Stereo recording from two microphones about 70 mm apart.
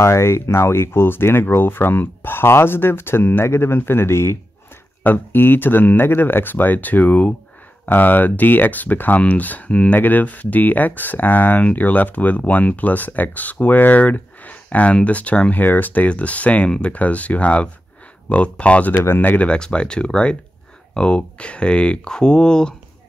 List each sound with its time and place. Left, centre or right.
0.0 s speech: left; by 18.9 s centre
19.0 s speech: left; by 22.8 s centre